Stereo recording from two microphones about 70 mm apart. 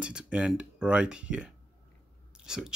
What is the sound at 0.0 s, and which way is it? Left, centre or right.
Speech, centre.